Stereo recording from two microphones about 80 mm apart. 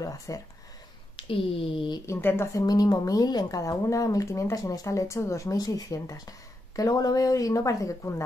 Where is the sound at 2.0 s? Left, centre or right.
Left.